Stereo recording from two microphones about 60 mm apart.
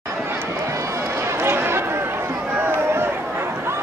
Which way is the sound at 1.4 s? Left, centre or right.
Right.